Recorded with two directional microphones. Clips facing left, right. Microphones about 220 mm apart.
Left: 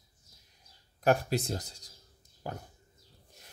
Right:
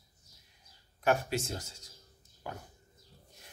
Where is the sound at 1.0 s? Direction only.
35° left (ahead or behind).